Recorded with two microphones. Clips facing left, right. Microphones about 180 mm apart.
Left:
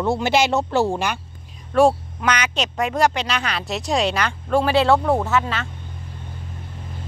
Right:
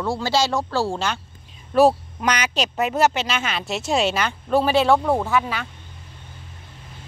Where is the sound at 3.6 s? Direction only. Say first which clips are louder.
Even; centre (ahead or behind).